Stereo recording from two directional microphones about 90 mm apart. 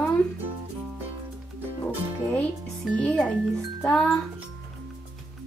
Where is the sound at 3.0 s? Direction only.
15° left (ahead or behind).